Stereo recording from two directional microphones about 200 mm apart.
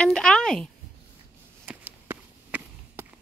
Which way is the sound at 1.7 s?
10° right (ahead or behind).